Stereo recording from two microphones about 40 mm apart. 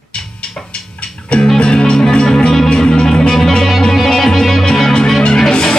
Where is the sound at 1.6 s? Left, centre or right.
Left.